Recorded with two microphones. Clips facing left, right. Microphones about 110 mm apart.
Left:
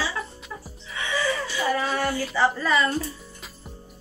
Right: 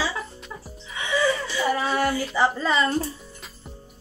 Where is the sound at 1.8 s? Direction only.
15° right (ahead or behind).